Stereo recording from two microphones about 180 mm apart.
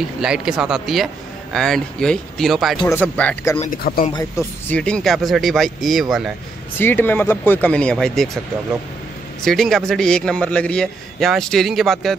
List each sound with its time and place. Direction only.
0.2 s a man's voice: 5° right (ahead or behind)
3.5 s speech: 40° left (ahead or behind)
3.8 s speech: 55° left (ahead or behind)
4.1 s a man's voice: 15° left (ahead or behind); by 6.0 s centre (ahead or behind)
6.8 s speech: 10° left (ahead or behind)
9.4 s a man's voice: centre (ahead or behind)